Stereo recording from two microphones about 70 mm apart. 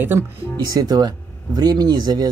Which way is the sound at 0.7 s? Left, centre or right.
Right.